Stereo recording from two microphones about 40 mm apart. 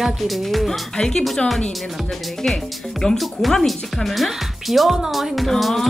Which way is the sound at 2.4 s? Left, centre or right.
Centre.